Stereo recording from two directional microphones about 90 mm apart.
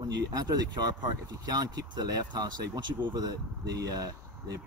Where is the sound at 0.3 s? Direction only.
50° right (ahead or behind).